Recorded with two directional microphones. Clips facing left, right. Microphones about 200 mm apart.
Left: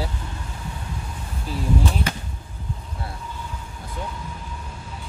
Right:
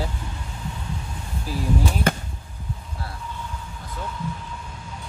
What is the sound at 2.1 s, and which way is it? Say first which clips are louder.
Arrow: right 6 dB; 50° right (ahead or behind).